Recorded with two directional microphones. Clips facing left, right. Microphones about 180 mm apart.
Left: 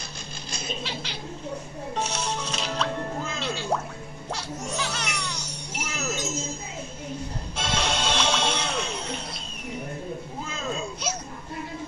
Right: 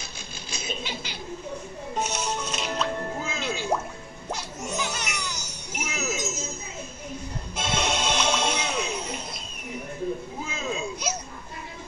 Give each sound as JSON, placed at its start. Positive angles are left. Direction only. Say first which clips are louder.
{"t": 0.5, "sound": "snicker", "louder": "even", "side_deg": -5}
{"t": 2.0, "sound": "music", "louder": "right 1 dB", "side_deg": -5}
{"t": 5.4, "sound": "music", "louder": "even", "side_deg": 30}
{"t": 5.9, "sound": "music", "louder": "right 1 dB", "side_deg": -5}
{"t": 7.5, "sound": "music", "louder": "right 1 dB", "side_deg": -5}
{"t": 10.4, "sound": "a sound", "louder": "left 1 dB", "side_deg": -5}